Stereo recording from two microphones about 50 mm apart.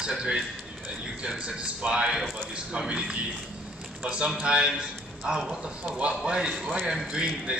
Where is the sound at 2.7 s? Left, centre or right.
Right.